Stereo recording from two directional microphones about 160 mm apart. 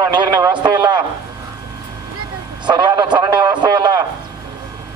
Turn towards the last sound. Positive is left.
turn(degrees=-25)  # may be behind; listen again after turning